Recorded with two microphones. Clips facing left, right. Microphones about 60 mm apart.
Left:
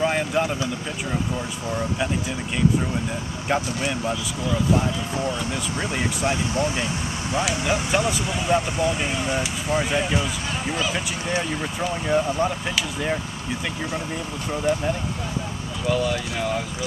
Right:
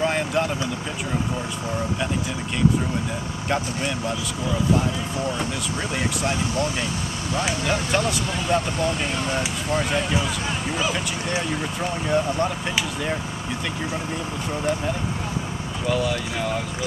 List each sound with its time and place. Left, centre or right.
0.0 s vehicle: centre
3.4 s speech: centre
6.2 s speech: left
7.6 s speech: centre
11.9 s speech: centre
15.9 s speech: centre